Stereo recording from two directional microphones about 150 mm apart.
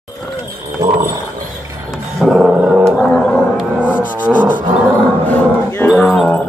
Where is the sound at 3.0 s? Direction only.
5° left (ahead or behind).